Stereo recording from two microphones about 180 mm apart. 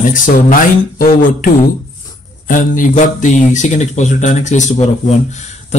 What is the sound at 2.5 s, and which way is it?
Speech, 45° left (ahead or behind).